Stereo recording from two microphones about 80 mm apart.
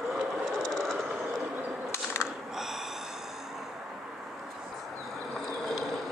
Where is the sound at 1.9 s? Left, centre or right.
Left.